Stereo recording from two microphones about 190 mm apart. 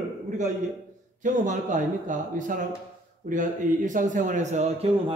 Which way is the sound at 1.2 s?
40° right (ahead or behind).